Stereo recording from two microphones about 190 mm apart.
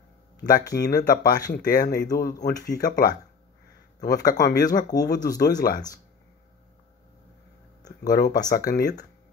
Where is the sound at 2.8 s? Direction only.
50° left (ahead or behind).